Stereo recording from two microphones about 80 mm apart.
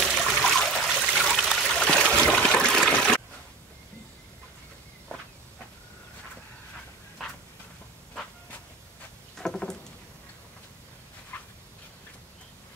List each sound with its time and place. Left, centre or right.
0.0 s trickle: centre
2.7 s water: centre
9.4 s rowboat: centre
11.3 s a sound: left